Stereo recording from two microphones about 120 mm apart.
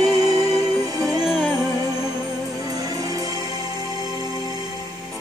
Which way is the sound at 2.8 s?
30° right (ahead or behind).